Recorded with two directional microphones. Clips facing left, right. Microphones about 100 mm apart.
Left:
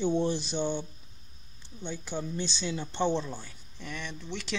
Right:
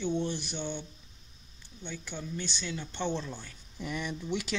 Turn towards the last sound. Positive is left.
turn(degrees=-10)  # may be behind; listen again after turning